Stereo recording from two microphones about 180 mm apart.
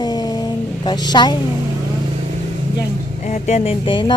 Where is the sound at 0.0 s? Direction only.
25° left (ahead or behind).